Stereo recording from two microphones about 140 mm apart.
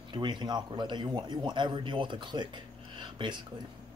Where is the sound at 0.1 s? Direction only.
35° right (ahead or behind).